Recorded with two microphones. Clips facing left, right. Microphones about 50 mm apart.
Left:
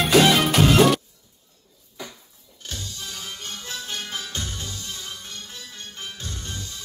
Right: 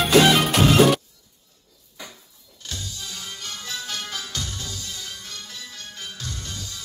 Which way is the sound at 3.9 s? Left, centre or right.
Left.